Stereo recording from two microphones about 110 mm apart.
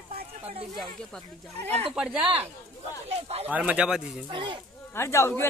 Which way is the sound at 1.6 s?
75° right (ahead or behind).